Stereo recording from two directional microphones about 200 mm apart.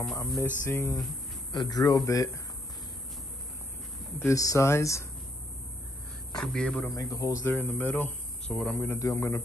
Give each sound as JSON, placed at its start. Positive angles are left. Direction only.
{"t": 0.4, "sound": "a man's voice", "side_deg": 15}
{"t": 4.2, "sound": "speech", "side_deg": 15}
{"t": 6.3, "sound": "a man's voice", "side_deg": 5}
{"t": 6.9, "sound": "speech", "side_deg": 15}